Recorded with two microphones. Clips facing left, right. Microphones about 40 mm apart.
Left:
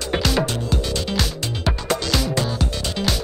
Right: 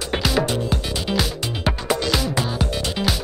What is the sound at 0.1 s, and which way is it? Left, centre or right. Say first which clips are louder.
Music: even; centre.